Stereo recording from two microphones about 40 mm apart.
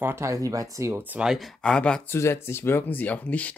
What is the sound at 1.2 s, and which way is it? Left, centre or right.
Speech, right.